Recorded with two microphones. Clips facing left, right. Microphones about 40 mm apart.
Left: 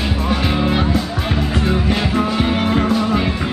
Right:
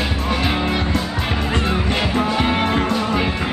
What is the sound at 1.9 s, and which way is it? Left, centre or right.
Music, centre.